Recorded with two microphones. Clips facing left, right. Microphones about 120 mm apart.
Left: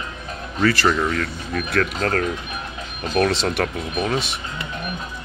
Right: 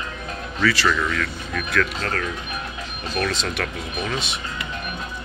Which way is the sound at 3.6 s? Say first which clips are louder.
Left 4 dB; 35° left (ahead or behind).